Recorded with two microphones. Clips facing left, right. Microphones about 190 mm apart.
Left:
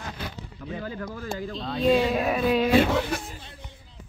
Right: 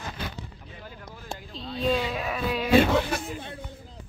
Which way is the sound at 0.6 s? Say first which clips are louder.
Left 11 dB; 90° left.